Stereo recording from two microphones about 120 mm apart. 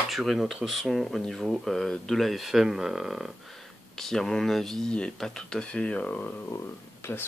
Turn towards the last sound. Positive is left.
turn(degrees=20)  # may be behind; listen again after turning